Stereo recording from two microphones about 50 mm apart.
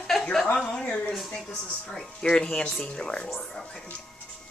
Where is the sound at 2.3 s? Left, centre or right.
Centre.